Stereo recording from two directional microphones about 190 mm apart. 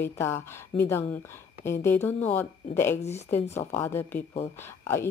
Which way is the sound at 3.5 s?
15° left (ahead or behind).